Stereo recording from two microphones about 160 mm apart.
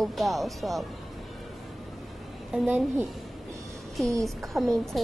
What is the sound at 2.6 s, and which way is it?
Speech, 10° right (ahead or behind).